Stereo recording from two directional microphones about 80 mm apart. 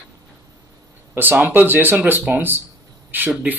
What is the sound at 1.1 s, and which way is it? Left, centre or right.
Speech, right.